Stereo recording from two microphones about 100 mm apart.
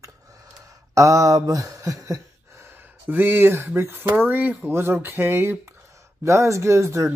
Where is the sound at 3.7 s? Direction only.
25° right (ahead or behind).